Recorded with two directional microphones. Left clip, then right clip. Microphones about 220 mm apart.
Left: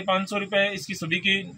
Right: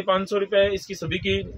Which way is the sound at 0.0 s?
20° right (ahead or behind).